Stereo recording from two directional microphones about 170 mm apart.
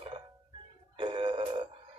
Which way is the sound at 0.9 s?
30° right (ahead or behind).